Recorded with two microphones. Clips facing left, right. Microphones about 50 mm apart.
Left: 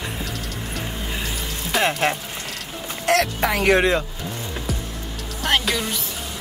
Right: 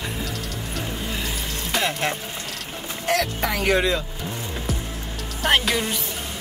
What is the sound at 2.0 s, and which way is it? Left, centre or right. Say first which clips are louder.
Music: left 4 dB; left.